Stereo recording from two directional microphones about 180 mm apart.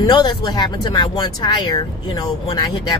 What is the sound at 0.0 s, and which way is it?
Speech, 25° left (ahead or behind).